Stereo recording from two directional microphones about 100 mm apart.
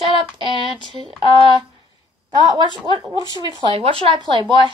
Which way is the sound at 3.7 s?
75° right (ahead or behind).